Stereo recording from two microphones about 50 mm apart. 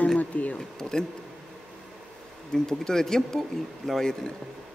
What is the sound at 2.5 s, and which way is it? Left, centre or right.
A man's voice, centre.